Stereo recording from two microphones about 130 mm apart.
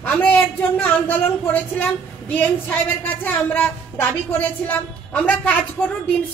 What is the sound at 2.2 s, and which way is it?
A woman's voice, 15° left (ahead or behind).